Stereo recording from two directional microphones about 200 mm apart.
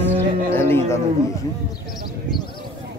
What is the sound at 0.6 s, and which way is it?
Music, 10° left (ahead or behind).